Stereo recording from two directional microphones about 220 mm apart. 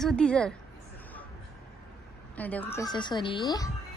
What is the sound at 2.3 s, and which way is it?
A woman's voice, 5° left (ahead or behind).